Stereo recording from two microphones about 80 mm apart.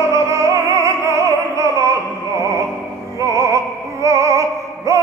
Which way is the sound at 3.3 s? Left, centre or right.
Right.